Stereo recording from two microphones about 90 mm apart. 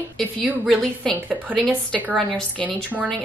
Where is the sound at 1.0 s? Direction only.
5° left (ahead or behind).